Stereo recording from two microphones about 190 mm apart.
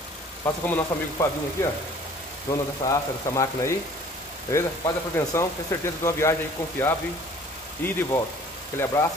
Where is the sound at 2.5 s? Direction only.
15° left (ahead or behind).